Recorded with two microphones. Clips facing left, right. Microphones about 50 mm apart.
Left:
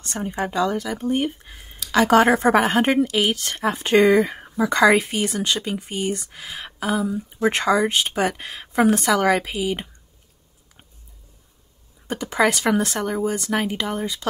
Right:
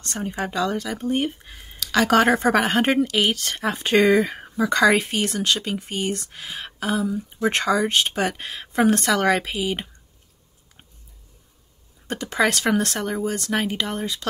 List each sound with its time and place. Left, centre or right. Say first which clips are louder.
0.0 s speech: left 1 dB; centre
12.1 s speech: left 1 dB; centre